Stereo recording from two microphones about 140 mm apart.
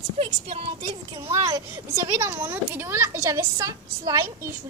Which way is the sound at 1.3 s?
20° right (ahead or behind).